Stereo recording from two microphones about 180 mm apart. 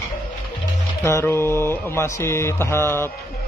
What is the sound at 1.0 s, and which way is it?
Speech, 15° left (ahead or behind).